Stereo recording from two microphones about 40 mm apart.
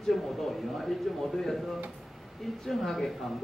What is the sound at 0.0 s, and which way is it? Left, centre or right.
A man's voice, centre.